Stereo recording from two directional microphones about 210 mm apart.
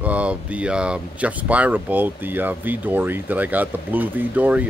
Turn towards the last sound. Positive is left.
turn(degrees=-5)  # may be behind; listen again after turning